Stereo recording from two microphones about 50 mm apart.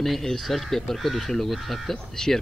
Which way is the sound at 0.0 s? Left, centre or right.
Centre.